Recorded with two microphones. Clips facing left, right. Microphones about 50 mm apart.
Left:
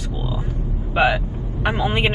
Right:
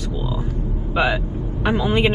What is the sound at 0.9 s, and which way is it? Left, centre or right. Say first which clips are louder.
Speech: left 2 dB; left.